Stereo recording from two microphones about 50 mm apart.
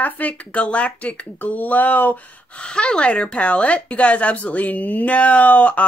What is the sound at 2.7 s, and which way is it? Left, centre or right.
Speech, left.